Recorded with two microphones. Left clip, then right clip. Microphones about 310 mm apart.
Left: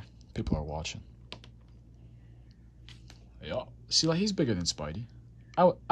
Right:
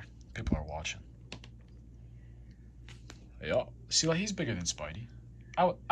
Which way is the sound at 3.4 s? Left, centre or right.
Centre.